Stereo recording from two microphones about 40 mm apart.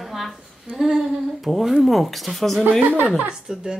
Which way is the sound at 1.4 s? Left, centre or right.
Centre.